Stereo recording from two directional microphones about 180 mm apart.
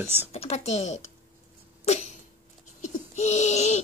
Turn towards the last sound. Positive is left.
turn(degrees=40)  # may be behind; listen again after turning